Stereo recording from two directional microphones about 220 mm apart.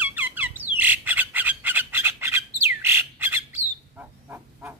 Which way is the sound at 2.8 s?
10° right (ahead or behind).